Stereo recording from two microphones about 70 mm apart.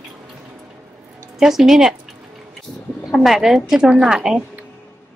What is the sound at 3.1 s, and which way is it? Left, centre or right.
A woman's voice, centre.